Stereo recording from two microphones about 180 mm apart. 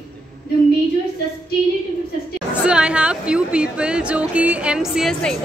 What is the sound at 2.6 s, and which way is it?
Speech, 5° right (ahead or behind).